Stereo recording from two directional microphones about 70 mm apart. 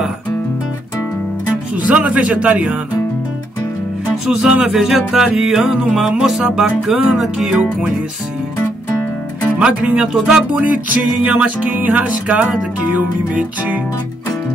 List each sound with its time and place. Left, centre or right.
1.8 s music: centre
4.3 s music: centre
9.6 s music: centre
11.2 s music: right